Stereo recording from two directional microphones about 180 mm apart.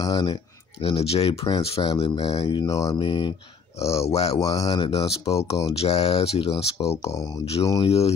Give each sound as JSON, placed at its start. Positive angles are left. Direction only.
{"t": 0.0, "sound": "speech", "side_deg": 20}
{"t": 0.8, "sound": "speech", "side_deg": 35}
{"t": 4.4, "sound": "speech", "side_deg": 20}
{"t": 5.7, "sound": "speech", "side_deg": 35}
{"t": 6.8, "sound": "speech", "side_deg": 15}